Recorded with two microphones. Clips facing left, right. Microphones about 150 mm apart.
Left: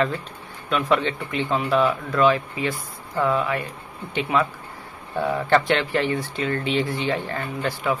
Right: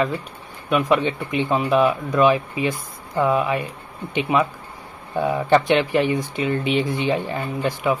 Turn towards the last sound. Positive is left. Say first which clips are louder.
# right 3 dB
turn(degrees=-15)  # may be behind; listen again after turning